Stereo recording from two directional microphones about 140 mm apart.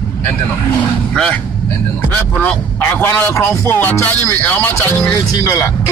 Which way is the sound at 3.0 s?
15° left (ahead or behind).